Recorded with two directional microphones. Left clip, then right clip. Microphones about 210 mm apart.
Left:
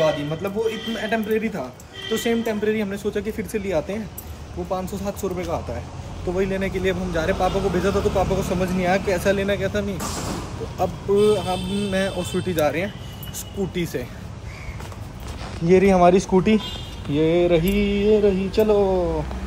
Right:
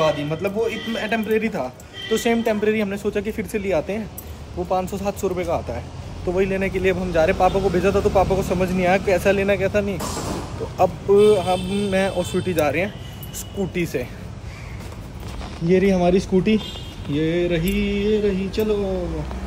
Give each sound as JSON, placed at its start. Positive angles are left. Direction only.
{"t": 0.0, "sound": "a man's voice", "side_deg": 0}
{"t": 15.8, "sound": "speech", "side_deg": 35}
{"t": 16.1, "sound": "a man's voice", "side_deg": -5}